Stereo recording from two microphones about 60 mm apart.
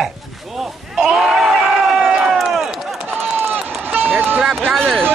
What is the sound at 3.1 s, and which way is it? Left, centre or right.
Run, right.